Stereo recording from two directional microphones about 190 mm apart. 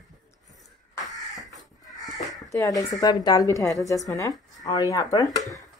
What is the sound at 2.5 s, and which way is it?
Speech, 15° left (ahead or behind).